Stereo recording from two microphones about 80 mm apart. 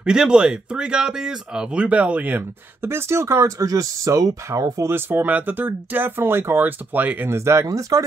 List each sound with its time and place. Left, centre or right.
0.0 s speech: centre
2.8 s speech: right
4.8 s speech: right